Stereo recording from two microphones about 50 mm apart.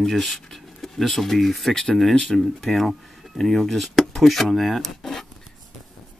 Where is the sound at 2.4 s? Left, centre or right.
Centre.